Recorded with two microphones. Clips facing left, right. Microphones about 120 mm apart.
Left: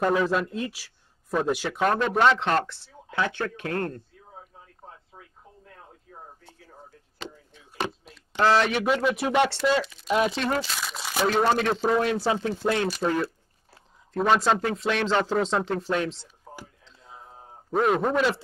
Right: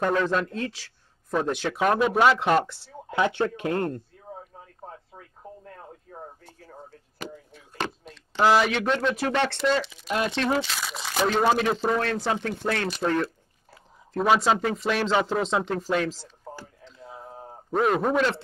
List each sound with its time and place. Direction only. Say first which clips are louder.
0.0 s a man's voice: left 1 dB; 5° left (ahead or behind); by 4.0 s 15° right (ahead or behind)
4.8 s a sound: right 5 dB; 45° right (ahead or behind)
8.0 s a sound: right 4 dB; 5° left (ahead or behind)
8.4 s speech: right 1 dB; 10° right (ahead or behind)
8.7 s a man's voice: left 1 dB; 5° left (ahead or behind)
17.6 s a man's voice: even; centre (ahead or behind)